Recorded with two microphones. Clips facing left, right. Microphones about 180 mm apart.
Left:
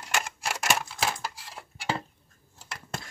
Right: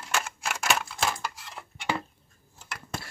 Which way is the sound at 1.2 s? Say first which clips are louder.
Right 1 dB; 30° left (ahead or behind).